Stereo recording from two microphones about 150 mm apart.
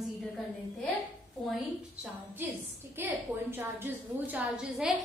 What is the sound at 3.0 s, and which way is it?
A woman's voice, 15° right (ahead or behind).